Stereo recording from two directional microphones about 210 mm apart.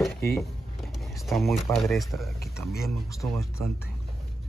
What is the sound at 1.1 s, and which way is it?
Speech, centre (ahead or behind).